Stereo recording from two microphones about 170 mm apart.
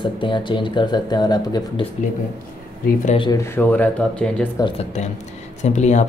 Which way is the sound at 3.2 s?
20° left (ahead or behind).